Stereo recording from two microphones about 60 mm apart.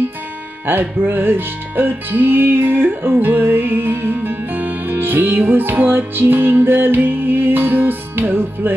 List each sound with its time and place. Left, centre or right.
0.7 s music: right